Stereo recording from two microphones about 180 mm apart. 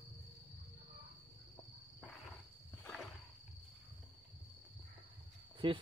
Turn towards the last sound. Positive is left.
turn(degrees=-30)  # may be behind; listen again after turning